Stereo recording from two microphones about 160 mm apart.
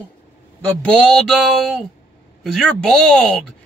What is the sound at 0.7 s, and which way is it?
A man's voice, 5° left (ahead or behind).